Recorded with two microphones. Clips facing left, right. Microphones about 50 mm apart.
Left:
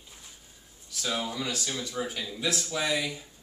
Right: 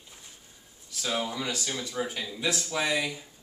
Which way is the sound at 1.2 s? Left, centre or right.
Centre.